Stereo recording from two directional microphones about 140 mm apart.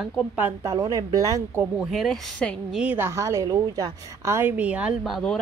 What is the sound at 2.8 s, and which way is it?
A woman's voice, 15° right (ahead or behind).